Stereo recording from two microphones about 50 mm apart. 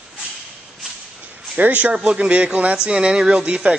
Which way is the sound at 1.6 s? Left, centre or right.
Right.